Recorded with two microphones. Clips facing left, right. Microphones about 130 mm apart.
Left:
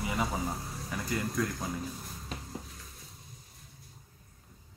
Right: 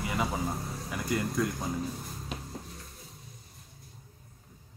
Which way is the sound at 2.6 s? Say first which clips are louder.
Right 3 dB; centre (ahead or behind).